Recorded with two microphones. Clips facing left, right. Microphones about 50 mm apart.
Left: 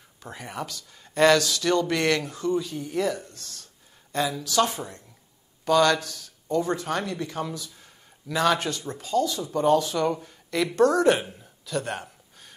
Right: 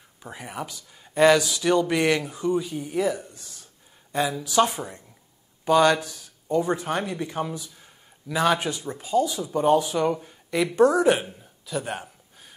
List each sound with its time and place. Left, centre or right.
0.2 s speech: centre
11.6 s gasp: centre